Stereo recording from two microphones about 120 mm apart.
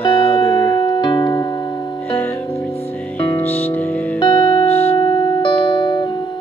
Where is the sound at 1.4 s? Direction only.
30° left (ahead or behind).